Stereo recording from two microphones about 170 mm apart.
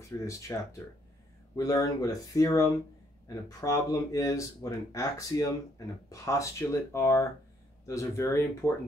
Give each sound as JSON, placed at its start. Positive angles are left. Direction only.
{"t": 0.3, "sound": "speech", "side_deg": 20}
{"t": 1.6, "sound": "speech", "side_deg": 20}